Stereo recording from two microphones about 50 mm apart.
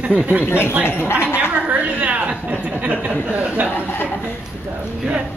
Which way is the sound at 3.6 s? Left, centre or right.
Left.